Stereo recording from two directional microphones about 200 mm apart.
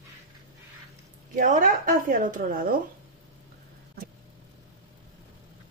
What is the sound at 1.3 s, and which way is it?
Speech, 40° right (ahead or behind).